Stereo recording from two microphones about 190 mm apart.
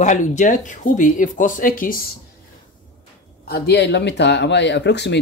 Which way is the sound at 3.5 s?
60° left (ahead or behind).